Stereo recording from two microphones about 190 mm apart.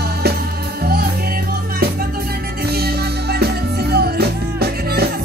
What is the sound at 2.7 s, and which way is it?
Music, 55° right (ahead or behind).